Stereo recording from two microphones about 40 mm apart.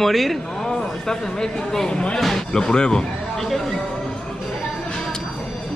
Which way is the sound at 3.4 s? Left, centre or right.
Centre.